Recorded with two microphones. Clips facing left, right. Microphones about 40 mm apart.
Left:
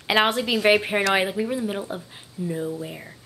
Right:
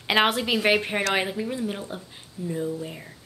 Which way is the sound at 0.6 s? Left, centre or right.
Centre.